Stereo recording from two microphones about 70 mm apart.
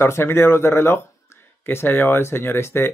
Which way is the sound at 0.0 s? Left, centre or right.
Left.